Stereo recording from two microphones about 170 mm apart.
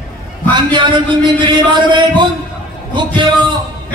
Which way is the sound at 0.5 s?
25° right (ahead or behind).